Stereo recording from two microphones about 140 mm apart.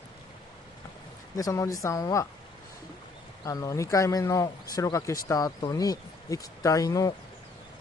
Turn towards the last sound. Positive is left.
turn(degrees=25)  # may be behind; listen again after turning